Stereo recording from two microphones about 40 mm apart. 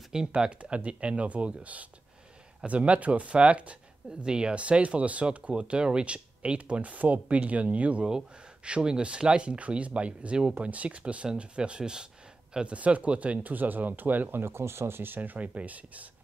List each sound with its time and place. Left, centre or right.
0.1 s speech: centre
0.6 s speech: right
12.5 s speech: right
14.4 s speech: right